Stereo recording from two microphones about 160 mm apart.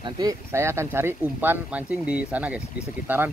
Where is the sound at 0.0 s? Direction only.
25° right (ahead or behind).